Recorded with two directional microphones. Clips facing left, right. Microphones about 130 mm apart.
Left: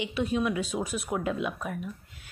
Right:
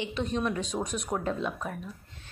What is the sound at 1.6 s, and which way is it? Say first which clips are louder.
Speech: left 2 dB; 15° left (ahead or behind).